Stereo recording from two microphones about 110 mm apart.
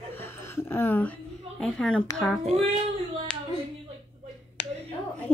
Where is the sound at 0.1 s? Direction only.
20° left (ahead or behind).